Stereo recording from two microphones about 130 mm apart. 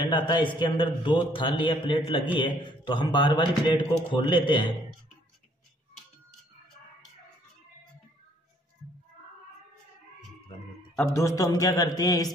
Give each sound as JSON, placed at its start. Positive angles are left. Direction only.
{"t": 0.1, "sound": "a man's voice", "side_deg": 35}
{"t": 11.1, "sound": "speech", "side_deg": 25}